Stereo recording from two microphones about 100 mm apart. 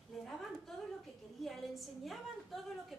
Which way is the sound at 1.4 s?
Centre (ahead or behind).